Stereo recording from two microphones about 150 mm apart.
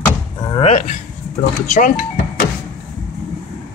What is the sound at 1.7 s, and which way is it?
Speech, 65° left (ahead or behind).